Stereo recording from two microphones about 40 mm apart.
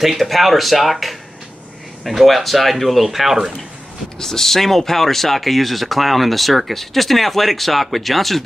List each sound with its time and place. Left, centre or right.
0.0 s speech: centre
4.2 s speech: centre